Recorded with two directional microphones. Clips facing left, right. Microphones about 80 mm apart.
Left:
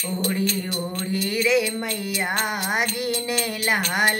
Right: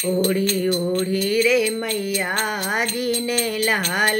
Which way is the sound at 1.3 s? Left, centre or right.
Left.